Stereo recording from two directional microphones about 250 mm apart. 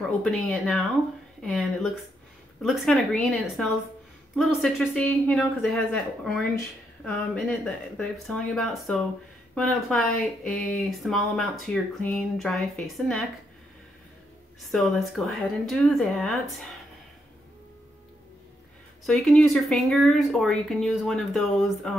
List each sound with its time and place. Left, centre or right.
0.2 s speech: centre
14.7 s speech: centre
19.0 s speech: centre